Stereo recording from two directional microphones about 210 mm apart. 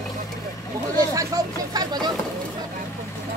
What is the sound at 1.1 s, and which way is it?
Speech, 15° right (ahead or behind).